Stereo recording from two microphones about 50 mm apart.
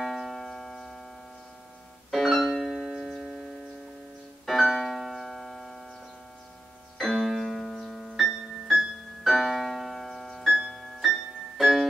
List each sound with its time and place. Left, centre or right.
0.0 s music: centre
2.0 s keyboard: centre
4.5 s keyboard: centre
7.1 s piano: centre
10.7 s keyboard: centre